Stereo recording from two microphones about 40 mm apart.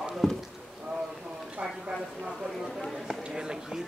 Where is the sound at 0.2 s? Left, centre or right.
Centre.